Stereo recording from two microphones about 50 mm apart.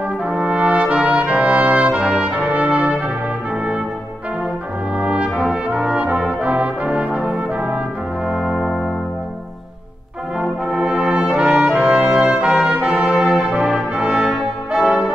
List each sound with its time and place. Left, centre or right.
0.3 s brass instrument: right
4.9 s brass instrument: right
8.3 s brass instrument: centre
8.5 s brass instrument: centre
10.4 s brass instrument: centre